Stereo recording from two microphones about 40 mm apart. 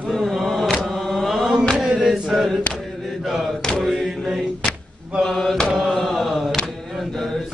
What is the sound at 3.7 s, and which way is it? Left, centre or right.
Mantra, centre.